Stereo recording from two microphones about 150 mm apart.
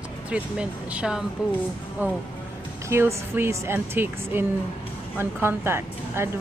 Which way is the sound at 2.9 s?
15° right (ahead or behind).